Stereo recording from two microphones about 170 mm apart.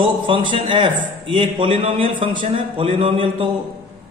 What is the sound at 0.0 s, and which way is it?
A man's voice, 30° right (ahead or behind).